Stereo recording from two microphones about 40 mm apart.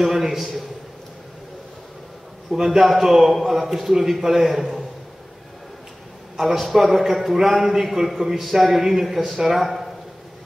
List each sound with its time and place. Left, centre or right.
0.0 s a man's voice: centre
2.5 s a man's voice: centre
6.3 s a man's voice: centre